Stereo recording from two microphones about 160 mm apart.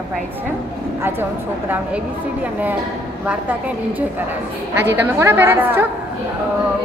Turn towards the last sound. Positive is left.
turn(degrees=-15)  # may be behind; listen again after turning